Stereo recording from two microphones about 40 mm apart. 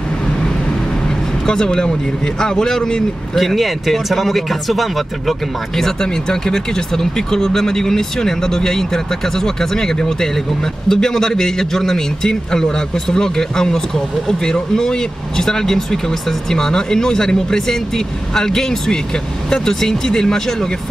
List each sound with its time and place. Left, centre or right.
1.4 s a man's voice: centre
3.3 s a man's voice: centre